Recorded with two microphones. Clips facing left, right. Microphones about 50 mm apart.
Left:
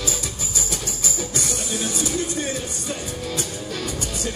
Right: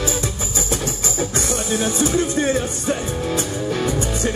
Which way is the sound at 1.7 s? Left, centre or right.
Right.